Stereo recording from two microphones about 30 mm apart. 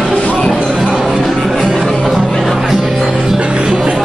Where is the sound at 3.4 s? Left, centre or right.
Right.